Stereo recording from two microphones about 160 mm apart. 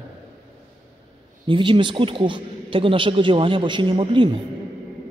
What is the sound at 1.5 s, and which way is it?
A man's voice, 30° right (ahead or behind).